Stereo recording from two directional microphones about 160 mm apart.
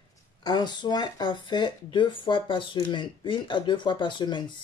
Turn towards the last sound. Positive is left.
turn(degrees=30)  # may be behind; listen again after turning